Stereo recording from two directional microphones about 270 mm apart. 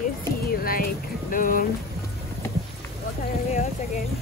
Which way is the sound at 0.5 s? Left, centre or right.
Left.